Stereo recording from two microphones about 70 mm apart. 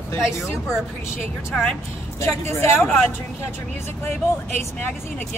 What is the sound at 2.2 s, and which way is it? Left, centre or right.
Speech, left.